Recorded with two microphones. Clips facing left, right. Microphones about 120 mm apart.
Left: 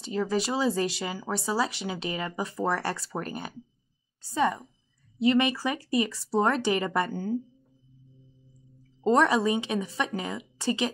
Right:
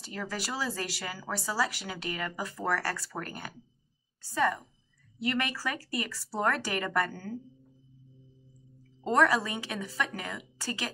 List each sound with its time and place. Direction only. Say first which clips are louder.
0.0 s a woman's voice: left 9 dB; 20° left (ahead or behind)
9.0 s speech: left 4 dB; 25° left (ahead or behind)